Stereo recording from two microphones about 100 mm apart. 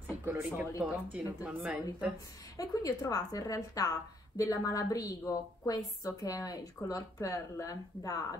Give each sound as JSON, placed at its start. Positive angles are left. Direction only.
{"t": 0.1, "sound": "a woman's voice", "side_deg": -15}
{"t": 2.5, "sound": "a woman's voice", "side_deg": 35}